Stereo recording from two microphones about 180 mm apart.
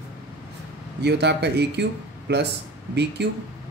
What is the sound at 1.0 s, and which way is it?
Speech, 70° right (ahead or behind).